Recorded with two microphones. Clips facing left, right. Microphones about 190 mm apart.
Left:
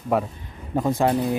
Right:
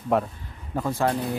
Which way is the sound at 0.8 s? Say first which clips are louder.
Left 4 dB; 20° left (ahead or behind).